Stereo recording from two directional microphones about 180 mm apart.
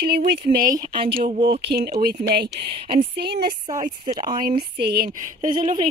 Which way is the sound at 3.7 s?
45° right (ahead or behind).